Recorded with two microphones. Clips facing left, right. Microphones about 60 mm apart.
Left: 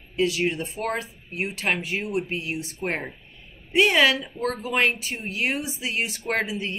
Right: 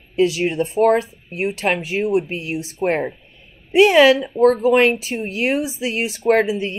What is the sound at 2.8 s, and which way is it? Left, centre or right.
Speech, right.